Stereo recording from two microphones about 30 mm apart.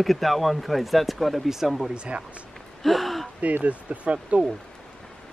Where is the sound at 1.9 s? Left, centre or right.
Right.